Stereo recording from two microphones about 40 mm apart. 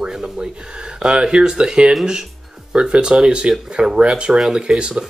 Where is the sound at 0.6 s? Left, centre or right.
Right.